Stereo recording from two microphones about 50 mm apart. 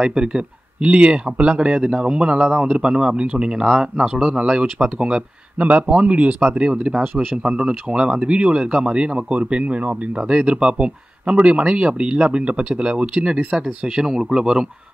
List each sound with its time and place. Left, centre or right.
0.0 s speech: centre
13.9 s speech: centre